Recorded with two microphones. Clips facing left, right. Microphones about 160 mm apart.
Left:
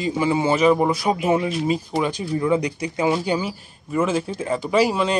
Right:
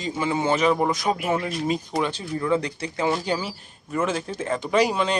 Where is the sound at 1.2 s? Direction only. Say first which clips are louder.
Left 5 dB; 20° left (ahead or behind).